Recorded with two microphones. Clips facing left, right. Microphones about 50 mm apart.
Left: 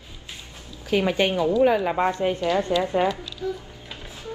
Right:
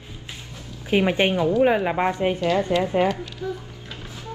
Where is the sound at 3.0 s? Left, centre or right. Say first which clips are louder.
Right 1 dB; right.